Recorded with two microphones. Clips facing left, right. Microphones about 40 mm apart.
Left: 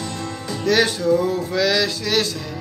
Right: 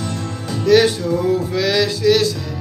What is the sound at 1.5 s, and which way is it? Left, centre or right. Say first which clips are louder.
Music: right 2 dB; centre.